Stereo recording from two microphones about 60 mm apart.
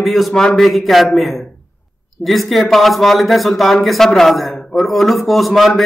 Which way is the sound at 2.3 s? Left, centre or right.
Centre.